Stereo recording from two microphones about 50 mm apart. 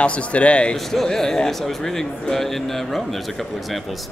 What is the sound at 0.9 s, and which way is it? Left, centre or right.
Speech, centre.